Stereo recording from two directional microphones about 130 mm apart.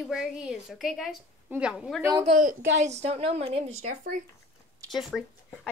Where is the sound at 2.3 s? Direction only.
70° right (ahead or behind); by 3.7 s 50° right (ahead or behind).